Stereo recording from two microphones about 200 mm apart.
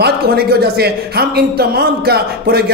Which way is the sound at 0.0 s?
50° right (ahead or behind).